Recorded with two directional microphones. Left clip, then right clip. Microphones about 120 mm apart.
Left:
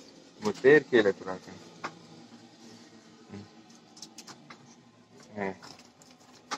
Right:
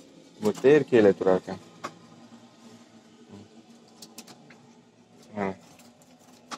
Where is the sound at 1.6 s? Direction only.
30° right (ahead or behind).